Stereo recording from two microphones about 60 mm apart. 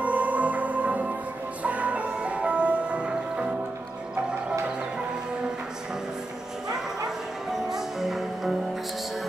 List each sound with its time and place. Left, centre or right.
0.0 s music: right
7.5 s music: centre